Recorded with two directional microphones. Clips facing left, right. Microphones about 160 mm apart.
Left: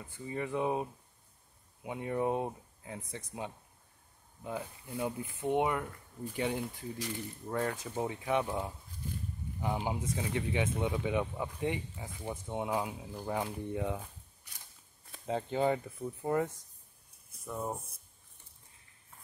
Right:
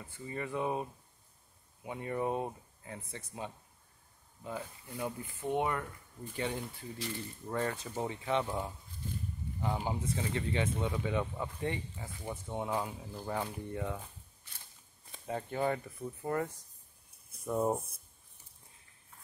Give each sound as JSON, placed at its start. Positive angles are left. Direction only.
{"t": 0.3, "sound": "speech", "side_deg": 10}
{"t": 15.2, "sound": "speech", "side_deg": 20}
{"t": 17.5, "sound": "speech", "side_deg": -10}